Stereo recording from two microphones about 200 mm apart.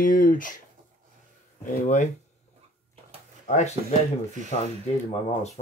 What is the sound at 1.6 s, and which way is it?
Speech, 40° left (ahead or behind).